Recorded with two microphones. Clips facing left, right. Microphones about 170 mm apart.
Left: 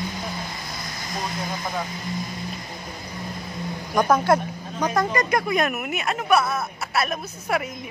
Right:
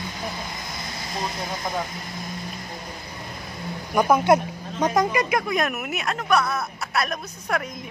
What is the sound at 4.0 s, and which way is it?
A woman's voice, 10° right (ahead or behind).